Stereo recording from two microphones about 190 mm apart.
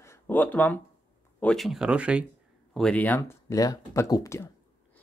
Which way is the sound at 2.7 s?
5° left (ahead or behind).